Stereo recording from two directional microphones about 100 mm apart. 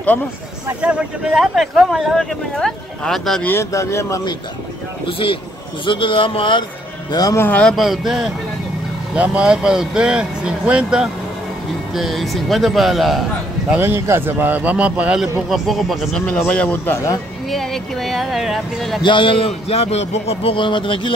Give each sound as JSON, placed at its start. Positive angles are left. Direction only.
{"t": 0.7, "sound": "speech", "side_deg": -10}
{"t": 3.4, "sound": "speech", "side_deg": 25}
{"t": 5.0, "sound": "speech", "side_deg": 65}
{"t": 7.1, "sound": "speech", "side_deg": 40}
{"t": 7.3, "sound": "speech", "side_deg": 20}
{"t": 7.6, "sound": "speech", "side_deg": 0}
{"t": 13.7, "sound": "a man's voice", "side_deg": -25}
{"t": 15.5, "sound": "speech", "side_deg": 0}
{"t": 16.3, "sound": "speech", "side_deg": 15}
{"t": 17.5, "sound": "speech", "side_deg": 0}
{"t": 19.0, "sound": "speech", "side_deg": 55}
{"t": 19.4, "sound": "speech", "side_deg": 90}